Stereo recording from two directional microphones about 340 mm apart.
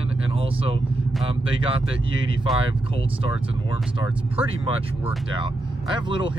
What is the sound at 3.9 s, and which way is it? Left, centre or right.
Speech, centre.